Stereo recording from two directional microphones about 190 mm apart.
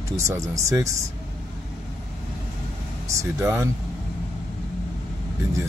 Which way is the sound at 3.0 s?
15° right (ahead or behind).